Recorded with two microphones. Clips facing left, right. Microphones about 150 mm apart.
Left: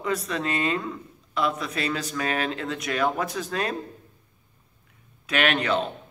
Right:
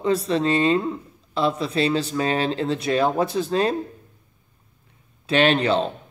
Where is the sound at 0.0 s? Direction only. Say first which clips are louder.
Right 7 dB; 30° right (ahead or behind).